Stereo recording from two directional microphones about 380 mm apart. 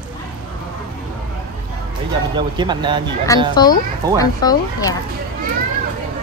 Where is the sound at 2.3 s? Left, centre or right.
Centre.